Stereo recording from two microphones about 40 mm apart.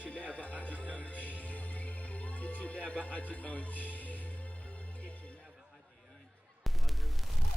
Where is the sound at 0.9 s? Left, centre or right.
Left.